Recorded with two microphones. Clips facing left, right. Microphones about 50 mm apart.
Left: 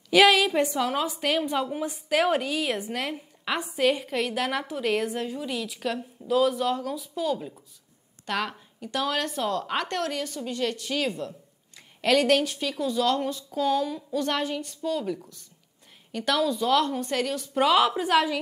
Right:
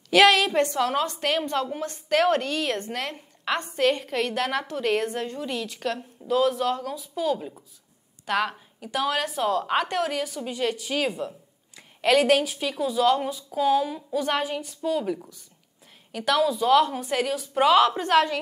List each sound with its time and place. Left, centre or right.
0.1 s a woman's voice: centre